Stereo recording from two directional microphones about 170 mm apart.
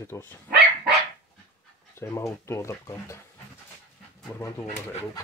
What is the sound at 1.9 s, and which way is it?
Speech, 15° left (ahead or behind).